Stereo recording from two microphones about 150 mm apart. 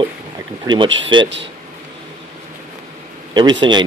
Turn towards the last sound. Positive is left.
turn(degrees=-30)  # may be behind; listen again after turning